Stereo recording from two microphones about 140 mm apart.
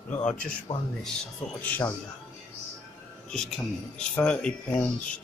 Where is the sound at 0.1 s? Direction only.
10° left (ahead or behind).